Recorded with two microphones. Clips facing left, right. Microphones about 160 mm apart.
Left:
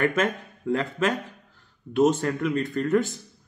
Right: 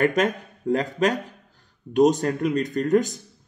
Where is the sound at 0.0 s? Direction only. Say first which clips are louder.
Right 3 dB; 40° right (ahead or behind).